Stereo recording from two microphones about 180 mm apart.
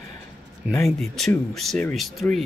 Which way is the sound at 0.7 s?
Centre (ahead or behind).